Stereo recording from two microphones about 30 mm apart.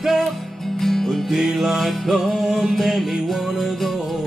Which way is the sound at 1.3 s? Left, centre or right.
Centre.